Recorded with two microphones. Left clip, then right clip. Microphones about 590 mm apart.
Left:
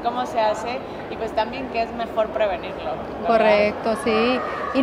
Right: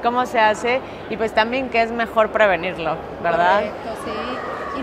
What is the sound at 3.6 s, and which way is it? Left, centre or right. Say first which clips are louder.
Speech: left 4 dB; left.